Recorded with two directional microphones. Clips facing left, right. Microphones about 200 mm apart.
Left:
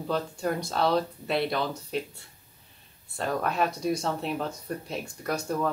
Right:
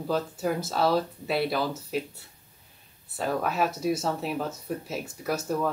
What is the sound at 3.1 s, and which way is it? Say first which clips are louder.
Speech: right 1 dB; 5° right (ahead or behind).